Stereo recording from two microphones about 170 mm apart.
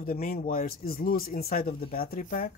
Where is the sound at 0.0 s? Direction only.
55° left (ahead or behind).